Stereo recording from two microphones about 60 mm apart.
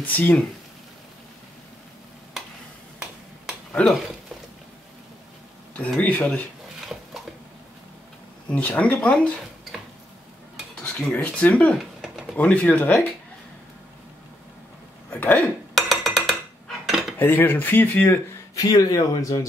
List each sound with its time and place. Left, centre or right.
0.0 s speech: left
3.8 s speech: left
5.8 s speech: left
8.5 s speech: left
11.1 s speech: left
11.8 s a sound: centre
12.4 s speech: left
15.1 s speech: left
15.7 s music: centre
17.2 s speech: left
18.5 s speech: left